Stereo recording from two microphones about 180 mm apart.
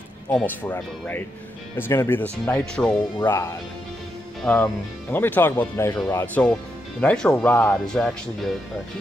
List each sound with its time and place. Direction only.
0.3 s speech: 10° left (ahead or behind)
3.2 s speech: 15° left (ahead or behind)
4.4 s speech: 5° left (ahead or behind)